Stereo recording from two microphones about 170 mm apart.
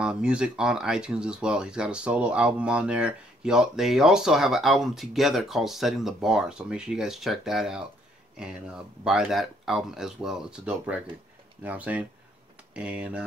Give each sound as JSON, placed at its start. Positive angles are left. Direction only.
{"t": 0.0, "sound": "speech", "side_deg": -5}